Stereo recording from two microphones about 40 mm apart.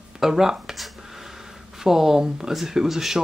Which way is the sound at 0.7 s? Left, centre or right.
Centre.